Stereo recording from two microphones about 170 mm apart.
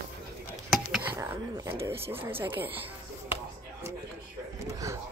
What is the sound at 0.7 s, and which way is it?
Whispering, centre (ahead or behind).